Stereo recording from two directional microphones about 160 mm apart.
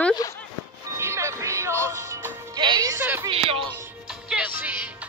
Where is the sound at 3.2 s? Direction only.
35° right (ahead or behind).